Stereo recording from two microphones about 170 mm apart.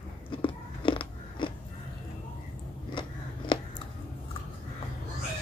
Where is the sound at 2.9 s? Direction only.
30° left (ahead or behind).